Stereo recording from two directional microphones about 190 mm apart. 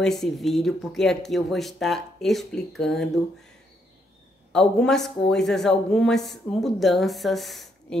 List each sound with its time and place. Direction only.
0.0 s speech: centre (ahead or behind)
4.5 s speech: 5° left (ahead or behind)